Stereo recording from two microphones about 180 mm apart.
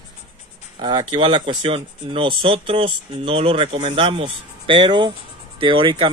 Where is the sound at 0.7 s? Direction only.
25° right (ahead or behind).